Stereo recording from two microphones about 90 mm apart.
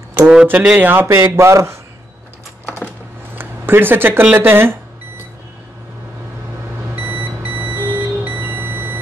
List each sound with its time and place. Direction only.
0.3 s speech: 10° right (ahead or behind); by 1.8 s 30° right (ahead or behind)
3.3 s speech: 25° right (ahead or behind)
7.0 s alarm clock: 20° right (ahead or behind)
8.4 s beep: 25° right (ahead or behind)